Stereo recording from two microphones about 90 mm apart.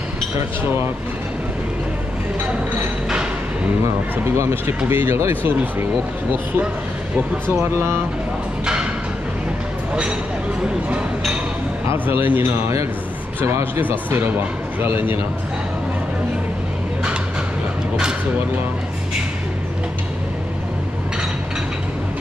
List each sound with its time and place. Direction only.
4.4 s speech: 30° right (ahead or behind)
7.5 s speech: 30° right (ahead or behind)
11.9 s speech: 25° right (ahead or behind)